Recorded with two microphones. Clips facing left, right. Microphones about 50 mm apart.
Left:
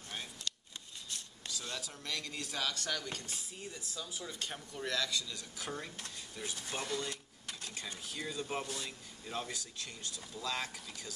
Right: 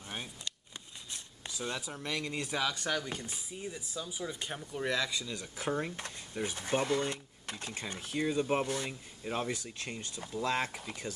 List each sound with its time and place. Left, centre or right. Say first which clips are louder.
0.1 s vehicle: right 1 dB; right
1.1 s speech: right 1 dB; right